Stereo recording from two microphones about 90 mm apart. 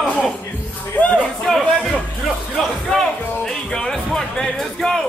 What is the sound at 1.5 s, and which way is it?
Music, 5° left (ahead or behind).